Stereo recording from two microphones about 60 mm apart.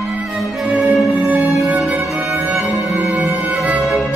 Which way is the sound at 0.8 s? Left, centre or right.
Centre.